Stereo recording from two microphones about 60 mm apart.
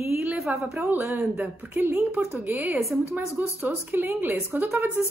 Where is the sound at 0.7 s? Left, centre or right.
Right.